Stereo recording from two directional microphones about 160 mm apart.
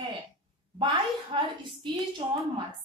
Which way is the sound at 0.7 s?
30° right (ahead or behind).